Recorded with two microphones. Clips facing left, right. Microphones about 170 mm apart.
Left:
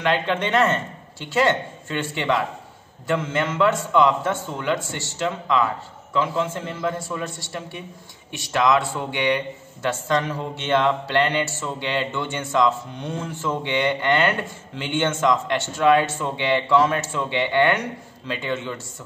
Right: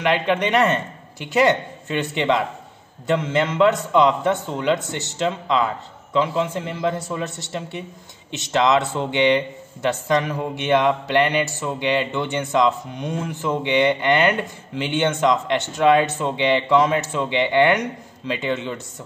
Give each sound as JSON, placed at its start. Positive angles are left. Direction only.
{"t": 0.0, "sound": "a man's voice", "side_deg": -15}